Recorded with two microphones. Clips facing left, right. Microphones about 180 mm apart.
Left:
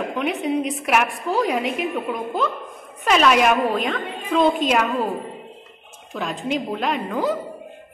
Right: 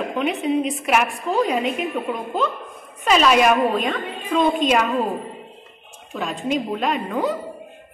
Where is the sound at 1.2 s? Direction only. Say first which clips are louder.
Right 1 dB; 20° right (ahead or behind).